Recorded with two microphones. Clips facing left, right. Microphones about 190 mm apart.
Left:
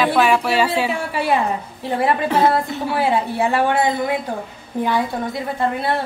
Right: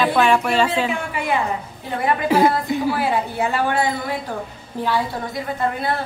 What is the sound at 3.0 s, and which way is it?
Speech, 25° left (ahead or behind).